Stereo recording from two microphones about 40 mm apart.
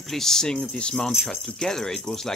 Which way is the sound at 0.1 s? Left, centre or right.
Centre.